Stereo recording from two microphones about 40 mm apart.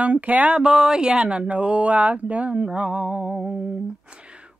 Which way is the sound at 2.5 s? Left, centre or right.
Right.